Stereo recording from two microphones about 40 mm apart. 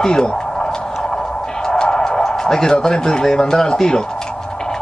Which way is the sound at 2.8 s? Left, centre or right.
Centre.